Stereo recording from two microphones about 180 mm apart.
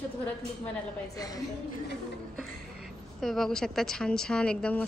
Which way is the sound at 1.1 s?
20° left (ahead or behind).